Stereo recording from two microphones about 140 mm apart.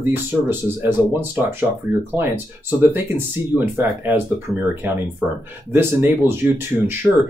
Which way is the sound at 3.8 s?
15° right (ahead or behind).